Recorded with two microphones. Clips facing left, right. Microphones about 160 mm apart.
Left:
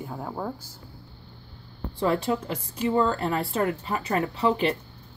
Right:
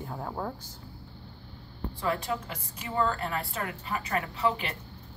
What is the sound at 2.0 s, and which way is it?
A woman's voice, 30° left (ahead or behind).